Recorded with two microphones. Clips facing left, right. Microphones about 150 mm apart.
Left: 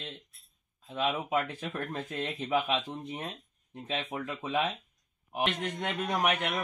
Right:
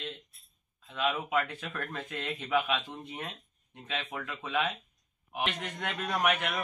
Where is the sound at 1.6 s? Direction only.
35° left (ahead or behind).